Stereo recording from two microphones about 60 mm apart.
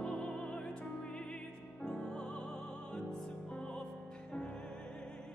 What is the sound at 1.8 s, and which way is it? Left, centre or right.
Music, centre.